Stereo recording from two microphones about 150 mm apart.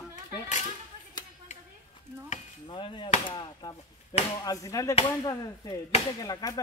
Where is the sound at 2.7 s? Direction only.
35° left (ahead or behind).